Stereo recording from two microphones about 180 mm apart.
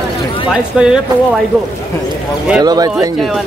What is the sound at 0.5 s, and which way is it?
Speech, 5° right (ahead or behind).